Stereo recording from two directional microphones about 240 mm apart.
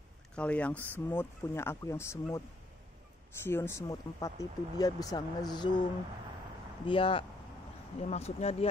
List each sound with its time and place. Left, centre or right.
0.4 s speech: centre
3.4 s speech: centre
6.9 s speech: left